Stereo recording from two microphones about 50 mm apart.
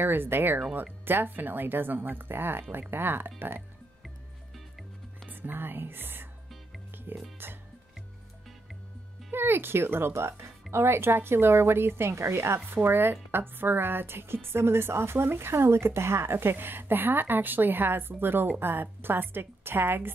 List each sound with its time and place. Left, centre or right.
0.0 s a woman's voice: right
4.6 s music: centre
5.3 s a woman's voice: right
7.4 s a woman's voice: right
9.3 s a woman's voice: right